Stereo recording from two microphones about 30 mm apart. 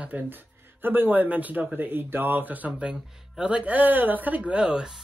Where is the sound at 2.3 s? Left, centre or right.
Right.